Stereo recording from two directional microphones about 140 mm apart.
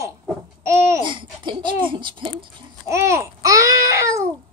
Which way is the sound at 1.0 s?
35° right (ahead or behind).